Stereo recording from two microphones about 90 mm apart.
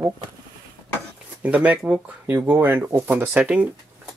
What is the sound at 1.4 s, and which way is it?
Speech, 15° right (ahead or behind).